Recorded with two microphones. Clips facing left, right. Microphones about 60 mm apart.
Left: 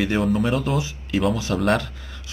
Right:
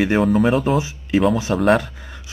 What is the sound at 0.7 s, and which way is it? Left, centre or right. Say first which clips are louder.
Speech: right 5 dB; right.